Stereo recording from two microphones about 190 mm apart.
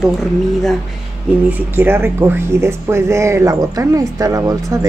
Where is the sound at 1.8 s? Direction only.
10° right (ahead or behind).